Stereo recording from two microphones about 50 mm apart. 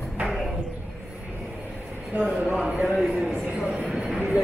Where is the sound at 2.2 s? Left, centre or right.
Centre.